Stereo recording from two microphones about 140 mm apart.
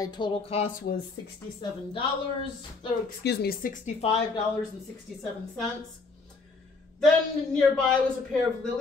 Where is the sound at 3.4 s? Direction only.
90° left.